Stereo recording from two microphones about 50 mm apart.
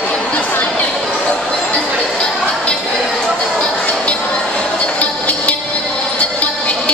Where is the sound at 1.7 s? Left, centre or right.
Left.